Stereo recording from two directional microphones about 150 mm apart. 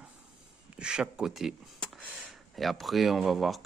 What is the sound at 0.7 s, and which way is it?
Speech, 5° right (ahead or behind).